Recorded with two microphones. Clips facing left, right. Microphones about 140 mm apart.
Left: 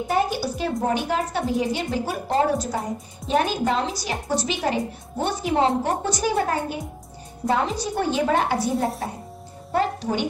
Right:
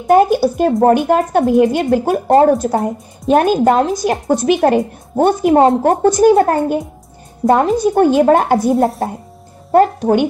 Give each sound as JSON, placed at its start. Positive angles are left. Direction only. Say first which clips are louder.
{"t": 0.0, "sound": "a woman's voice", "louder": "right 12 dB", "side_deg": -50}